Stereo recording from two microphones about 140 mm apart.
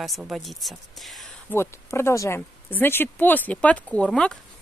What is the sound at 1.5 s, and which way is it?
Speech, 20° left (ahead or behind).